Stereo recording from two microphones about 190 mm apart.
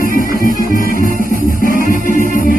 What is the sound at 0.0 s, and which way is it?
Music, 45° left (ahead or behind).